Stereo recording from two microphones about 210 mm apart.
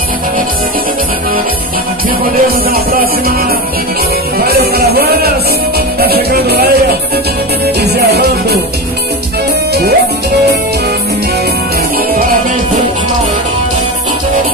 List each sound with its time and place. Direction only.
2.7 s music: 45° right (ahead or behind)
4.4 s music: 50° right (ahead or behind)
7.8 s music: 50° right (ahead or behind)